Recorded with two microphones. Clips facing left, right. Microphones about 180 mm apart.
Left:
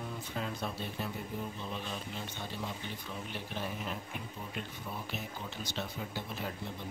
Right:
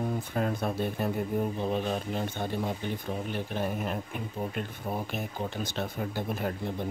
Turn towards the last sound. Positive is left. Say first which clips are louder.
# right 8 dB
turn(degrees=-50)  # may be behind; listen again after turning